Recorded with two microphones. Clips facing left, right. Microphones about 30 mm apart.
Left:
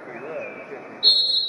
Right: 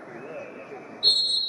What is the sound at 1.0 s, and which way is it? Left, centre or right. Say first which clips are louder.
Basketball bounce: left 4 dB; centre.